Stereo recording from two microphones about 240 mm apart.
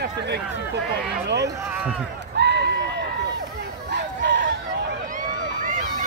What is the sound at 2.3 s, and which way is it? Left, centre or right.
Run, right.